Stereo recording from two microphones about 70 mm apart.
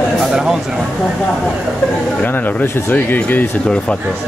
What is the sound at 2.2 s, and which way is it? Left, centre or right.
Speech, left.